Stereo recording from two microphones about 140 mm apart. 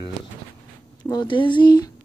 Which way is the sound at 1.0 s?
30° left (ahead or behind).